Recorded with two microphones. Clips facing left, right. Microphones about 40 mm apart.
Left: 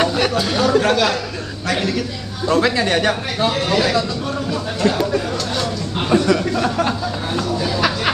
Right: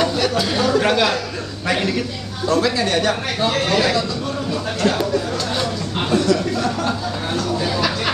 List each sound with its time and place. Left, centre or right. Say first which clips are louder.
0.0 s chatter: left 1 dB; left
0.3 s chatter: left 2 dB; centre
0.9 s a man's voice: even; centre
2.4 s a man's voice: left 2 dB; left
3.3 s speech: even; centre
6.0 s a sound: left 2 dB; left
7.5 s a sound: even; centre